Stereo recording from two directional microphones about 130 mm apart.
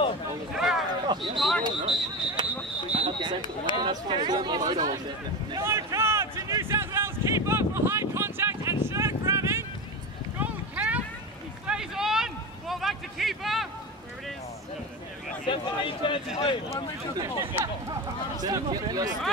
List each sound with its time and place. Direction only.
0.6 s a sound: centre (ahead or behind)
1.1 s speech: 35° right (ahead or behind)
1.6 s a sound: 35° right (ahead or behind)
3.8 s speech: 35° right (ahead or behind)
5.6 s a sound: 20° right (ahead or behind); by 13.7 s centre (ahead or behind)
15.4 s a man's voice: 40° left (ahead or behind)
16.3 s speech: 50° left (ahead or behind)
17.2 s speech: 15° right (ahead or behind)
18.4 s speech: 30° right (ahead or behind)